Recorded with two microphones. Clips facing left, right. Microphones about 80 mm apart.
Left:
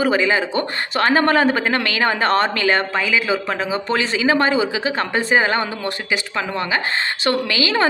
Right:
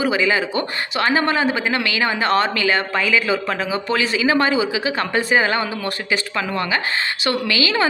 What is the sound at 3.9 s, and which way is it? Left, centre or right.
A woman's voice, left.